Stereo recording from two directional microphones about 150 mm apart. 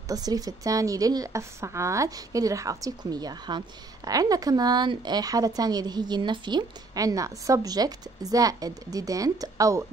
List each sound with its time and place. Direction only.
0.1 s speech: 25° right (ahead or behind)